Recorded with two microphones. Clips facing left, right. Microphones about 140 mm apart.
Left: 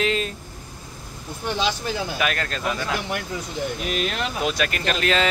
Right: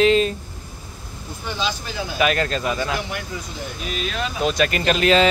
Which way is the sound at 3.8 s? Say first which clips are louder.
Left 1 dB; 65° left (ahead or behind).